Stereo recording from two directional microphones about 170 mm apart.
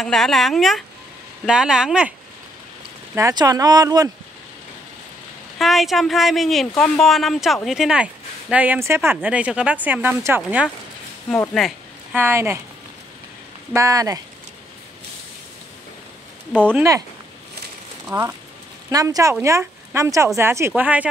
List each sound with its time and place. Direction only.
0.0 s speech: centre (ahead or behind)
3.2 s speech: 20° right (ahead or behind)
5.6 s speech: centre (ahead or behind)
11.2 s speech: 15° left (ahead or behind)
11.5 s a sound: centre (ahead or behind)
12.2 s a woman's voice: 15° right (ahead or behind)
13.7 s speech: 20° right (ahead or behind)
16.7 s a woman's voice: 20° right (ahead or behind)
18.0 s a woman's voice: 15° right (ahead or behind)